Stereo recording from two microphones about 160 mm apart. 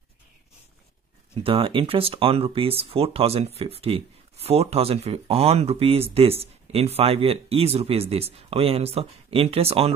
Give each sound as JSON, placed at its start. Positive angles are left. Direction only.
{"t": 1.3, "sound": "speech", "side_deg": -35}